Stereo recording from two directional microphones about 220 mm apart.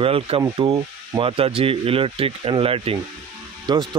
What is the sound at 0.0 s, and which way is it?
Speech, 25° right (ahead or behind).